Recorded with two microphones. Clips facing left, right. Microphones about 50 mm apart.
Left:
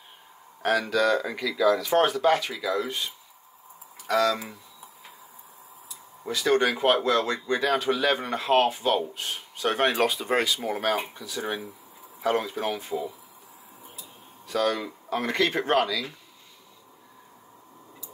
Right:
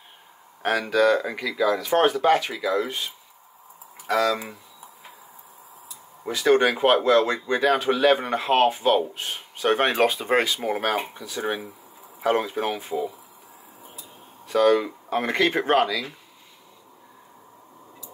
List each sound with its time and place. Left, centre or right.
0.6 s speech: right
4.1 s speech: centre
6.2 s speech: centre
14.5 s speech: right